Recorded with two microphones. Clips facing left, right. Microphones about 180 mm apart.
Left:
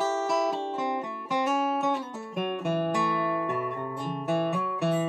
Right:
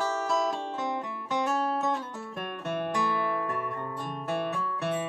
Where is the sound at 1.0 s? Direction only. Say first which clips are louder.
Left 2 dB; 10° left (ahead or behind).